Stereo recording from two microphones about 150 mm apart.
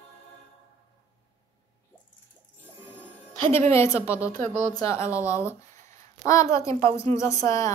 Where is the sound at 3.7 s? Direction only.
20° left (ahead or behind).